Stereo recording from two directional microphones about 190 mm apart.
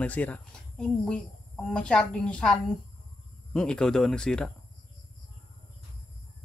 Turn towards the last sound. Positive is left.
turn(degrees=5)  # may be behind; listen again after turning